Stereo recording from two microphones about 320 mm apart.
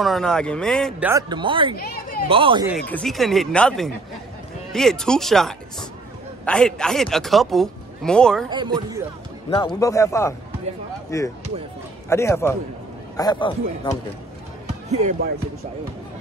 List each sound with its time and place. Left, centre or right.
0.0 s a man's voice: centre
1.8 s a sound: left
2.2 s a man's voice: centre
2.9 s a man's voice: centre
8.5 s a man's voice: centre
9.5 s speech: centre
14.9 s speech: right